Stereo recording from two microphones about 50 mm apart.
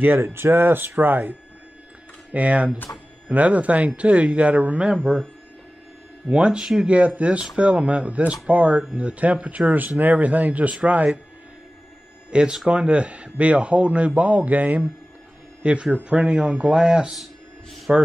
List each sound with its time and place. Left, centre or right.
0.0 s speech: right
2.3 s a man's voice: right
6.2 s a man's voice: centre
6.6 s speech: centre
7.2 s a man's voice: right
12.3 s a man's voice: centre
15.6 s a man's voice: right
17.1 s music: centre